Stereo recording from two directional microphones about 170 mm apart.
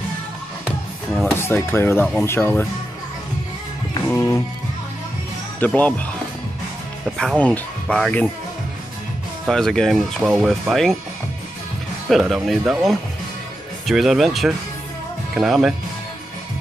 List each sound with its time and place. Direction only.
1.1 s music: 10° left (ahead or behind)
2.2 s speech: 15° left (ahead or behind)
4.1 s music: 15° left (ahead or behind)
5.6 s speech: 10° left (ahead or behind)
7.2 s speech: 5° left (ahead or behind)
9.5 s speech: 5° left (ahead or behind)
12.1 s speech: centre (ahead or behind)